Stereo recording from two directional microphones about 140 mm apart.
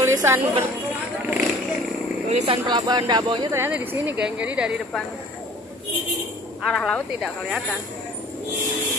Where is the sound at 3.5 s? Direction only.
10° right (ahead or behind).